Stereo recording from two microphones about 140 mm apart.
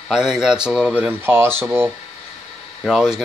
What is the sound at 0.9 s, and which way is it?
Speech, 15° right (ahead or behind).